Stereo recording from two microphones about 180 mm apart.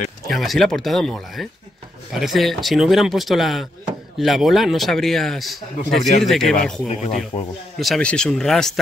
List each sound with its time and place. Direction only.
0.3 s a man's voice: centre (ahead or behind)
7.3 s speech: 35° left (ahead or behind)
7.8 s a man's voice: 5° left (ahead or behind)